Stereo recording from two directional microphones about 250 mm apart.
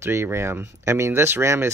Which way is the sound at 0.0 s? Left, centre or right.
Centre.